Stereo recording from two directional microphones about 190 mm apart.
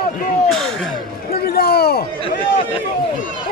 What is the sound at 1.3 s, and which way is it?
Speech, 55° left (ahead or behind).